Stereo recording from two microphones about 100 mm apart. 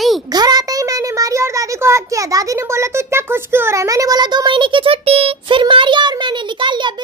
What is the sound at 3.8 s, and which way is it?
Child singing, 35° right (ahead or behind).